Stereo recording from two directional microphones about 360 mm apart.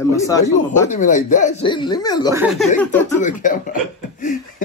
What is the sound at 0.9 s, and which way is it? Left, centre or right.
Speech, left.